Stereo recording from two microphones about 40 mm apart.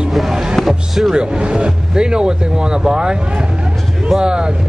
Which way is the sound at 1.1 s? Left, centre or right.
Right.